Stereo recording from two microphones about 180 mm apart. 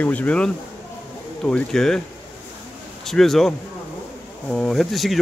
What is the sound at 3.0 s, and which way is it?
Speech, centre (ahead or behind).